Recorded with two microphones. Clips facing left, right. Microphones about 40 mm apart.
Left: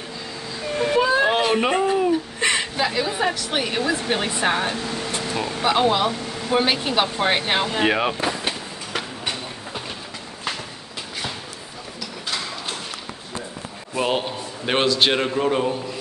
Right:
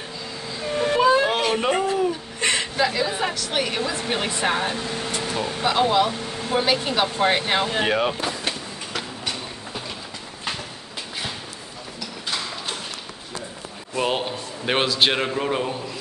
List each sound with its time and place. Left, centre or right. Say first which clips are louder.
0.6 s children playing: even; centre
1.5 s a sound: left 2 dB; centre
3.1 s a woman's voice: left 2 dB; centre
5.6 s speech: left 1 dB; centre
7.8 s vehicle: left 2 dB; centre
12.3 s clip-clop: even; centre
13.9 s a man's voice: left 1 dB; centre